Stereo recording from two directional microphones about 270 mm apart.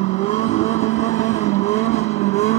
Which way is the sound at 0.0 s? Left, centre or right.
Left.